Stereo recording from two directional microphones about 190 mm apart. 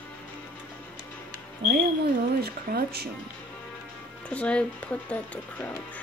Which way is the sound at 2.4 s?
55° right (ahead or behind).